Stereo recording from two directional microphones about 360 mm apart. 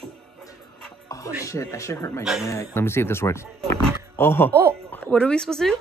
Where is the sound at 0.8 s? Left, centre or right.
Centre.